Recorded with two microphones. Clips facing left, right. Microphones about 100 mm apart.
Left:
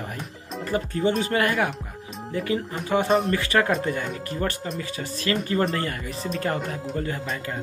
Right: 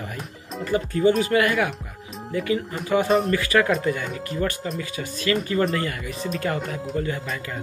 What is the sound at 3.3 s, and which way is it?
Speech, 30° left (ahead or behind).